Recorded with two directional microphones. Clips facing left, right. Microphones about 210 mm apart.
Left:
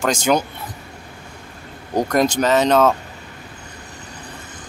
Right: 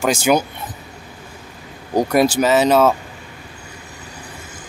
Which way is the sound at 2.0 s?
10° right (ahead or behind).